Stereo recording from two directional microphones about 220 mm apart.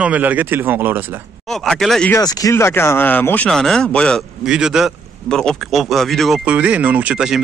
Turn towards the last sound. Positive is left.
turn(degrees=-5)  # may be behind; listen again after turning